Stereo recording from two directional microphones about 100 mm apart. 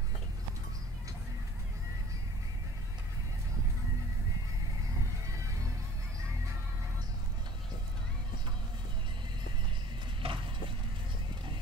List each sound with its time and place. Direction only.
10.2 s clip-clop: 65° right (ahead or behind)